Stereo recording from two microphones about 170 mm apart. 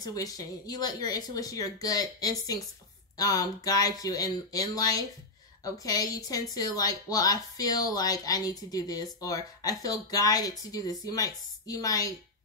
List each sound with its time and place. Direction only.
0.0 s a woman's voice: 20° left (ahead or behind)